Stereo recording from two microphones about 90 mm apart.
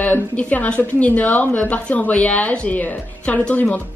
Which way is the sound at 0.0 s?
15° left (ahead or behind).